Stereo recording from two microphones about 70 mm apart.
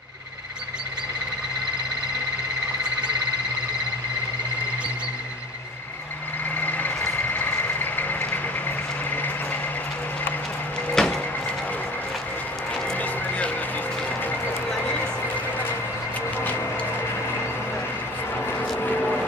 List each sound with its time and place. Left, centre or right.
6.6 s vehicle: left
11.0 s a sound: centre
12.9 s music: left